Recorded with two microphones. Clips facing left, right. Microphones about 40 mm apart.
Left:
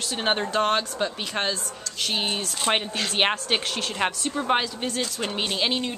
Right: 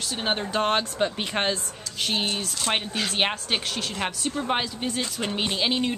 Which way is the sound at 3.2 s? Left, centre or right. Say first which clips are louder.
Left 4 dB; centre.